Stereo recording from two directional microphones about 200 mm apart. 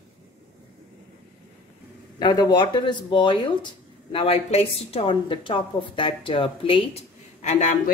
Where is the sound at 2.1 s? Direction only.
20° left (ahead or behind).